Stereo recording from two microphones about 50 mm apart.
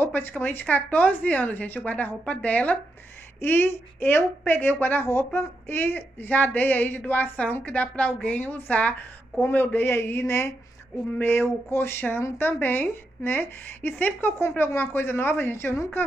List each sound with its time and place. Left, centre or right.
0.0 s a woman's voice: left
3.3 s a woman's voice: left
11.1 s a woman's voice: left
12.4 s a woman's voice: left